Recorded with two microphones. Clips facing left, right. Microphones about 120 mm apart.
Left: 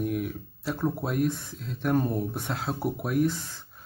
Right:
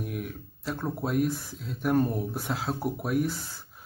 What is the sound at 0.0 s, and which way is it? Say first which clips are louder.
Speech: left 6 dB; centre (ahead or behind).